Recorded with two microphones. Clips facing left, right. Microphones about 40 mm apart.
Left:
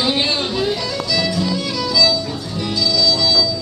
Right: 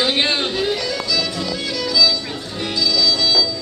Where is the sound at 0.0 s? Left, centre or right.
Right.